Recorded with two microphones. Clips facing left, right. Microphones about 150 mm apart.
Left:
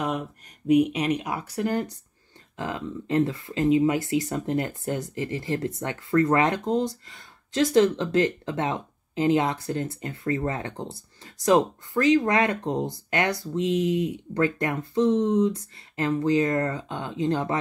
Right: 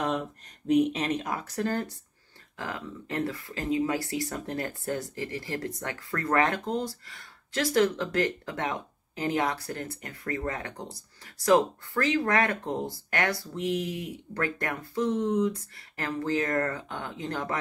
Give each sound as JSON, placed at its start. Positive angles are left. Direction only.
{"t": 0.7, "sound": "speech", "side_deg": 10}